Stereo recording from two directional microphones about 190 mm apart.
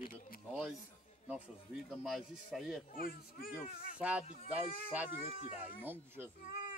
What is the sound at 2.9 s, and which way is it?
Speech, 50° left (ahead or behind).